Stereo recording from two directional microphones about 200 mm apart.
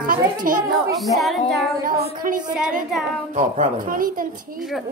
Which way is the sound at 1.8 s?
45° right (ahead or behind).